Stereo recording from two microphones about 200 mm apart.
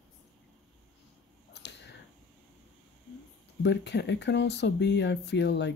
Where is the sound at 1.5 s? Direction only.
60° left (ahead or behind).